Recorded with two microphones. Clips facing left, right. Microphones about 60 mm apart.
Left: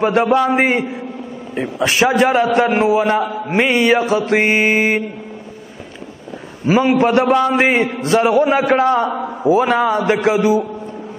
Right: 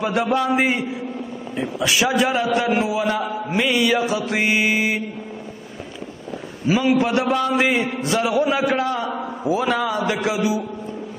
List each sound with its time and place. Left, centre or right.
0.0 s a man's voice: left
6.7 s a man's voice: left